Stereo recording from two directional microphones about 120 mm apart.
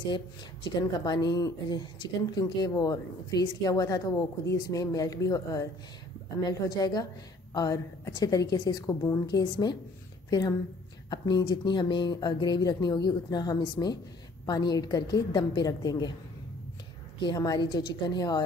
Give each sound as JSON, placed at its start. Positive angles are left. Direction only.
{"t": 0.7, "sound": "a woman's voice", "side_deg": 35}
{"t": 11.1, "sound": "a woman's voice", "side_deg": 35}
{"t": 17.2, "sound": "a woman's voice", "side_deg": 35}